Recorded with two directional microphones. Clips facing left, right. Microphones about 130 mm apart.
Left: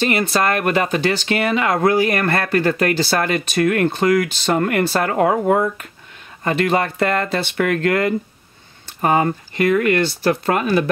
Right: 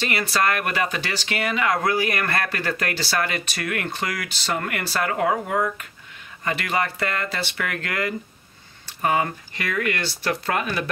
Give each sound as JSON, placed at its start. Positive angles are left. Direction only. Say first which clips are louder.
{"t": 0.1, "sound": "speech", "louder": "left 5 dB", "side_deg": 25}
{"t": 0.8, "sound": "speech", "louder": "left 9 dB", "side_deg": 50}
{"t": 1.4, "sound": "speech", "louder": "left 4 dB", "side_deg": 30}
{"t": 6.4, "sound": "speech", "louder": "left 7 dB", "side_deg": 35}